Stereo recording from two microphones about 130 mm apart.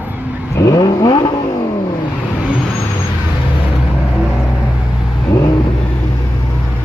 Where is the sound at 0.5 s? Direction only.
30° left (ahead or behind).